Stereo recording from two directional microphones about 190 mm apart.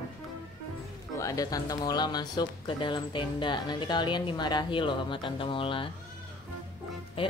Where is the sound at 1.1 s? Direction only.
20° left (ahead or behind).